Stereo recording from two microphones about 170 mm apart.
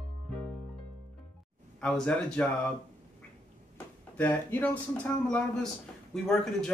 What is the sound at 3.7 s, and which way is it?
Speech, 10° left (ahead or behind).